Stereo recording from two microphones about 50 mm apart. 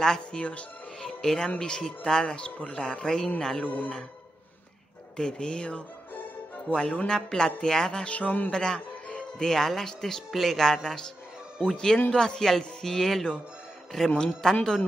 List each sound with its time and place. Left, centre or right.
0.0 s speech: centre
0.4 s speech: left
1.0 s speech: centre
3.6 s speech: left
5.1 s speech: centre
8.1 s speech: left
8.5 s speech: centre